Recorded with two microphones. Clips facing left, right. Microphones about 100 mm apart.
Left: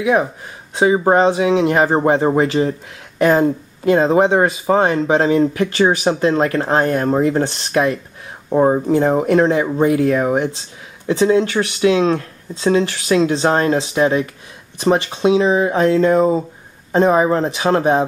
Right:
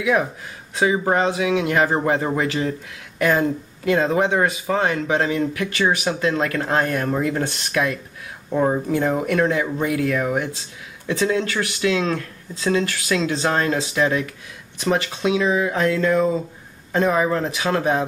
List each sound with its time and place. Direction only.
0.0 s speech: 30° left (ahead or behind)